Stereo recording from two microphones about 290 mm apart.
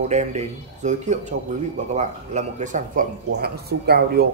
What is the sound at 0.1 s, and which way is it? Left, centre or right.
A man's voice, right.